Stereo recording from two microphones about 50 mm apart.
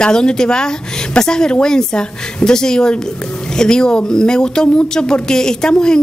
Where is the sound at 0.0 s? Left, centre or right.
Centre.